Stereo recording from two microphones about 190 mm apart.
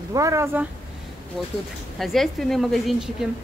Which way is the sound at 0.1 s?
15° right (ahead or behind).